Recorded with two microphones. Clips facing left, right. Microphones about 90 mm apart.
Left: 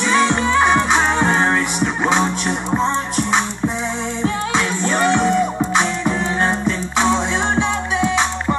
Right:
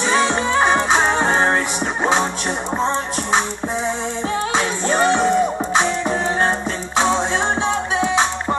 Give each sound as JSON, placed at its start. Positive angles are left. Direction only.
{"t": 0.1, "sound": "music", "side_deg": -20}
{"t": 4.6, "sound": "music", "side_deg": -25}
{"t": 8.0, "sound": "music", "side_deg": -20}